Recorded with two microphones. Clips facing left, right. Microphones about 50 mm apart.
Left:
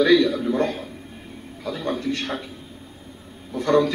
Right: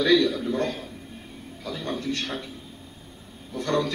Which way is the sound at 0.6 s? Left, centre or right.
Left.